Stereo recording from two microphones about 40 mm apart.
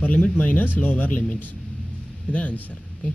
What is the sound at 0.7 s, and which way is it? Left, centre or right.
Speech, left.